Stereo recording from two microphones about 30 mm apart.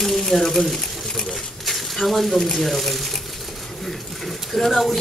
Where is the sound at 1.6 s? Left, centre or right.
Centre.